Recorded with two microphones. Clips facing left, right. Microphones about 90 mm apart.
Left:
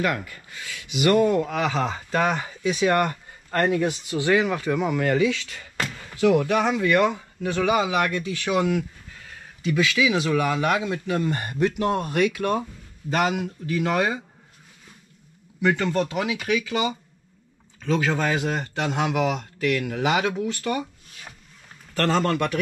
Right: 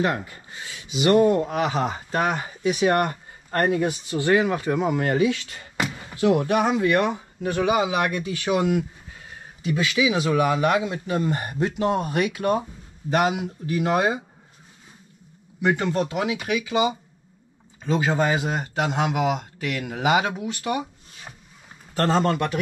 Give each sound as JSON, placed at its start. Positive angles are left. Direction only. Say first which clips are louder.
{"t": 0.0, "sound": "speech", "louder": "right 1 dB", "side_deg": -30}
{"t": 13.1, "sound": "speech", "louder": "right 1 dB", "side_deg": -10}
{"t": 15.7, "sound": "speech", "louder": "right 1 dB", "side_deg": -10}